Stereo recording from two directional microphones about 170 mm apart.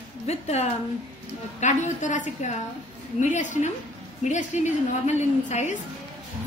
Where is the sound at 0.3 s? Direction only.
40° left (ahead or behind).